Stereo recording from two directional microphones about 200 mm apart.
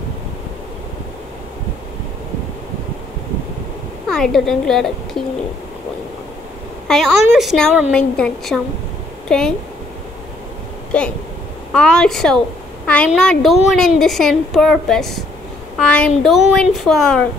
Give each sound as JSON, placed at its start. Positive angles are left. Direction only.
{"t": 4.1, "sound": "a woman's voice", "side_deg": 0}
{"t": 6.9, "sound": "a woman's voice", "side_deg": 0}
{"t": 10.9, "sound": "a woman's voice", "side_deg": 5}